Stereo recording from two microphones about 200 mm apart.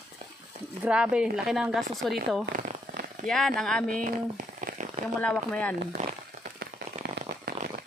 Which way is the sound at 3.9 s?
40° right (ahead or behind).